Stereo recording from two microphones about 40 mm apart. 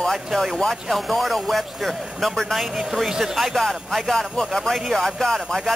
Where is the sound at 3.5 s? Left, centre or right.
Centre.